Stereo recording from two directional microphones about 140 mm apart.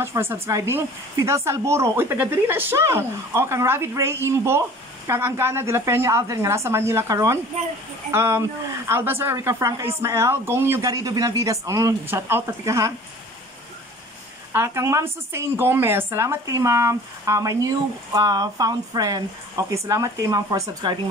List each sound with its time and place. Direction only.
0.0 s speech: 15° right (ahead or behind)
14.5 s speech: 20° right (ahead or behind)